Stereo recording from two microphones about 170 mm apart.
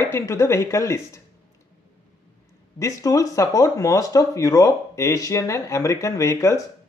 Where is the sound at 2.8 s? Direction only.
20° left (ahead or behind).